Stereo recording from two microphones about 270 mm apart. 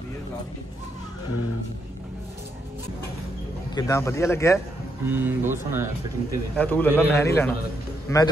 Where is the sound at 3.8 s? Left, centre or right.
Centre.